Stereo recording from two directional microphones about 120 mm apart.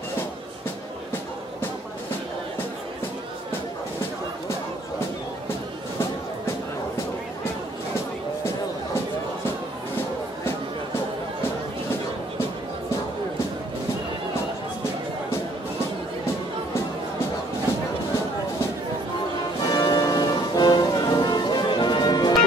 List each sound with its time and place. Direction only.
19.6 s music: 35° left (ahead or behind)